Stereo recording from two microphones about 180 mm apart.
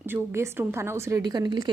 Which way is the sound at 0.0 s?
15° right (ahead or behind).